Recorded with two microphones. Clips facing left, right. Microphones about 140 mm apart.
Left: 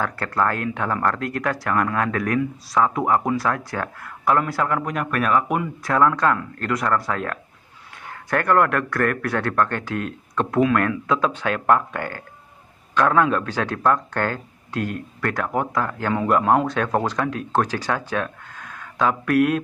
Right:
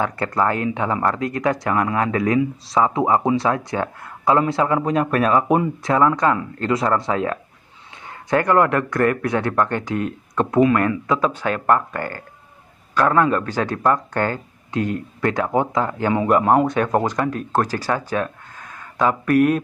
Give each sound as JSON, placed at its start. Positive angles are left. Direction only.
{"t": 0.0, "sound": "speech", "side_deg": -15}
{"t": 5.9, "sound": "speech", "side_deg": -15}